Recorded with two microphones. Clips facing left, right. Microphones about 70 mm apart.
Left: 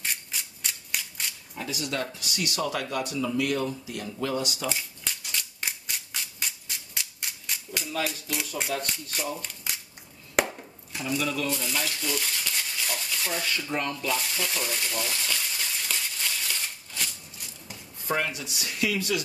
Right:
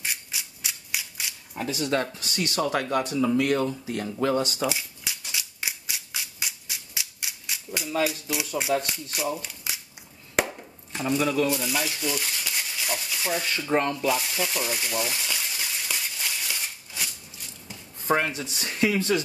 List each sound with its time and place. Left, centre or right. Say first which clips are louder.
0.0 s rub: right 1 dB; centre
1.7 s speech: right 5 dB; right
4.6 s cap gun: right 4 dB; centre
7.9 s speech: right 5 dB; centre
10.3 s chopping: even; centre
11.1 s speech: right 5 dB; right
11.4 s a sound: right 4 dB; centre
13.7 s speech: right 9 dB; right
13.9 s water: right 4 dB; centre
18.0 s speech: right 4 dB; right